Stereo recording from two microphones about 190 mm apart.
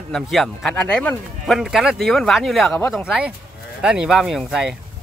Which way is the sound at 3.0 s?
5° right (ahead or behind).